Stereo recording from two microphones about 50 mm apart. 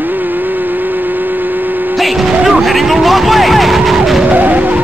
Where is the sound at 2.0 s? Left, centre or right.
Centre.